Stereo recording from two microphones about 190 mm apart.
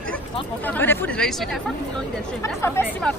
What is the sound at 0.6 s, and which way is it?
Speech, 10° left (ahead or behind).